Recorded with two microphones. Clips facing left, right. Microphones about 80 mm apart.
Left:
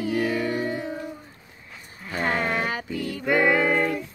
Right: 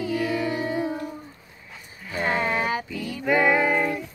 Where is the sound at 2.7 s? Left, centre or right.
Left.